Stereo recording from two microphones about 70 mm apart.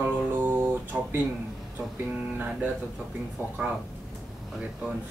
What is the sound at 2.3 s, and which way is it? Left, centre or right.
Speech, right.